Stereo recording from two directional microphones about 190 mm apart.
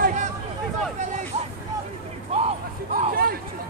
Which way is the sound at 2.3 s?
30° right (ahead or behind).